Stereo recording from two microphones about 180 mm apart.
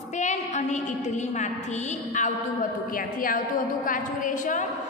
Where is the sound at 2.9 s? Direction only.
50° left (ahead or behind).